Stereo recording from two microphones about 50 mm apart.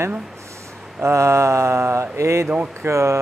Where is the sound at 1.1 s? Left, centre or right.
Right.